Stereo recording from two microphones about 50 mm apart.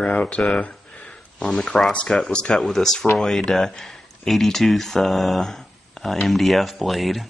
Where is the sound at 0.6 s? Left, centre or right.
Left.